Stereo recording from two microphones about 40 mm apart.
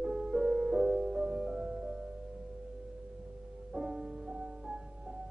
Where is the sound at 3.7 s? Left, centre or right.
Centre.